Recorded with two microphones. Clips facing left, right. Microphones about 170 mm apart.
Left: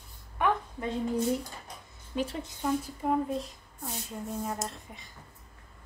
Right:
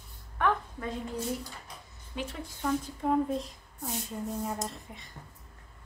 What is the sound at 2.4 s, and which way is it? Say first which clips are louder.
Speech: left 1 dB; 10° left (ahead or behind).